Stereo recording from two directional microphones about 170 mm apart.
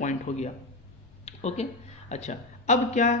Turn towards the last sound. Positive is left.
turn(degrees=45)  # may be behind; listen again after turning